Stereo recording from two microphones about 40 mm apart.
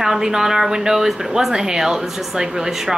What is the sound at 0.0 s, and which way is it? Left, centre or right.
A woman's voice, centre.